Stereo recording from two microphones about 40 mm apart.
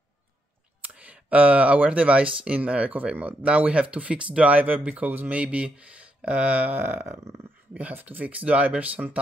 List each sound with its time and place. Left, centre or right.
0.9 s speech: right
5.4 s speech: right
6.7 s speech: right